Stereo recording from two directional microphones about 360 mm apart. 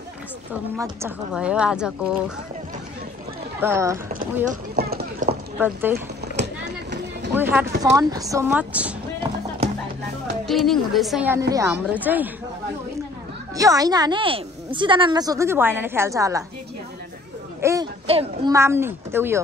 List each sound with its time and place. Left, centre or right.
0.7 s speech: centre
3.6 s a woman's voice: centre
4.5 s clip-clop: right
5.6 s speech: centre
5.9 s clip-clop: right
7.3 s a woman's voice: centre
10.4 s speech: centre
13.6 s a woman's voice: centre
17.6 s a woman's voice: centre